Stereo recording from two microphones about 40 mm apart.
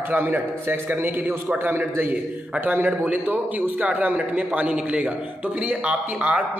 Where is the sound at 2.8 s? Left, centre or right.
Right.